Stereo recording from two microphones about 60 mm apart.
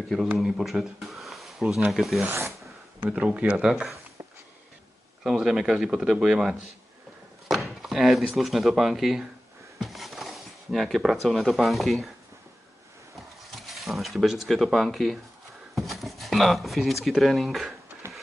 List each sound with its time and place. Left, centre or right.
0.4 s speech: centre
3.0 s speech: centre
3.6 s speech: centre
5.4 s speech: centre
9.8 s a sound: centre
11.0 s speech: centre
13.1 s a sound: centre
15.7 s speech: centre